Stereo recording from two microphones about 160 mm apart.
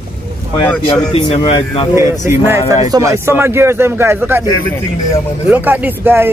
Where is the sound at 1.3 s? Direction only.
40° left (ahead or behind).